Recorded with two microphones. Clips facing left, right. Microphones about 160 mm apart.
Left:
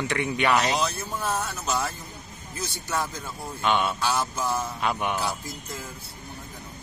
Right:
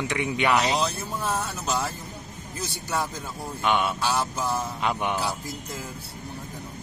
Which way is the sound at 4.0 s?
Centre (ahead or behind).